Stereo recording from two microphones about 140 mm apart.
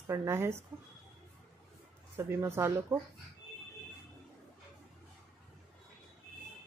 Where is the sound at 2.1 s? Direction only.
20° right (ahead or behind).